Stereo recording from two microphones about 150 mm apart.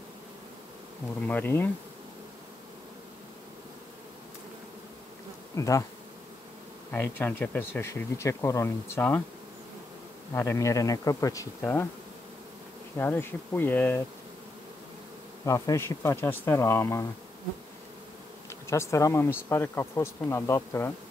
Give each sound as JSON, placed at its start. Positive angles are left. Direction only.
{"t": 1.2, "sound": "speech", "side_deg": 15}
{"t": 5.6, "sound": "speech", "side_deg": 20}
{"t": 6.9, "sound": "speech", "side_deg": 15}
{"t": 10.3, "sound": "speech", "side_deg": 20}
{"t": 12.9, "sound": "speech", "side_deg": 15}
{"t": 15.4, "sound": "speech", "side_deg": 20}
{"t": 18.7, "sound": "speech", "side_deg": 20}